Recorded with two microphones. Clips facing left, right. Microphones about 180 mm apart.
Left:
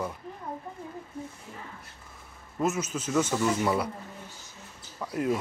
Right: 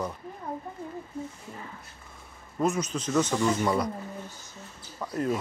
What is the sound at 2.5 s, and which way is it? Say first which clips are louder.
Speech: right 1 dB; 5° left (ahead or behind).